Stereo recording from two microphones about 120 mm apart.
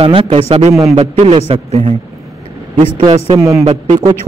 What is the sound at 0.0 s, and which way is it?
A man's voice, 55° right (ahead or behind).